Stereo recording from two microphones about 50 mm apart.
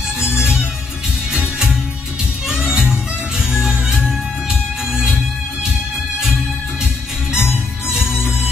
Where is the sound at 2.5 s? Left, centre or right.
Centre.